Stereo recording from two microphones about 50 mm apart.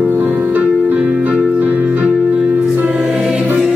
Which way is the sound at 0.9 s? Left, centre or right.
Right.